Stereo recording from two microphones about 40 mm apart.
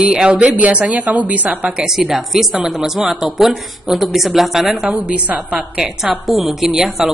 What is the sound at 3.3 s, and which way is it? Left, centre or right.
A woman's voice, centre.